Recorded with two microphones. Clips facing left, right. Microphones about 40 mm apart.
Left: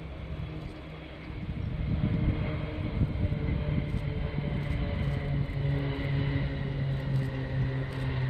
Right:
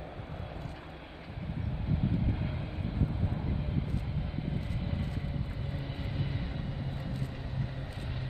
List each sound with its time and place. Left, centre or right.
2.3 s vehicle: left
4.6 s vehicle: left